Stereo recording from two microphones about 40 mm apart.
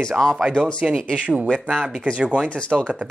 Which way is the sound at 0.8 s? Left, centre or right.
Right.